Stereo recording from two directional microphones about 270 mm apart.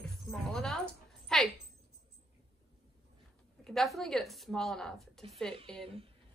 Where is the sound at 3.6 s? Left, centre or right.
Centre.